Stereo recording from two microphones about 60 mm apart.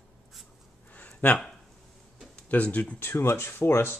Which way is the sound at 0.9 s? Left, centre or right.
Left.